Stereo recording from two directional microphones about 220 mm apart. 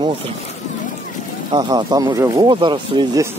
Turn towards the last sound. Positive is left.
turn(degrees=-20)  # may be behind; listen again after turning